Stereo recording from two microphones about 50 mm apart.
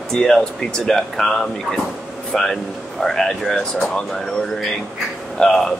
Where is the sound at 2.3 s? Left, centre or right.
Centre.